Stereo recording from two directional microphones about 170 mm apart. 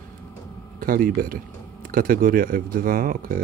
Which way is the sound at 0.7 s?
55° right (ahead or behind).